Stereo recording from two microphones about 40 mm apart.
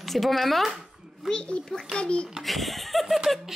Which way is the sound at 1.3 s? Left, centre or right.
Left.